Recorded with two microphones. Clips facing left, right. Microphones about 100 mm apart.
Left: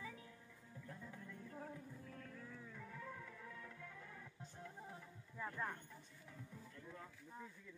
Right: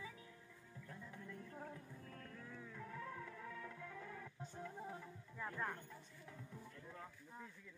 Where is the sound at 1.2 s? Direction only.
15° left (ahead or behind); by 2.8 s 5° right (ahead or behind).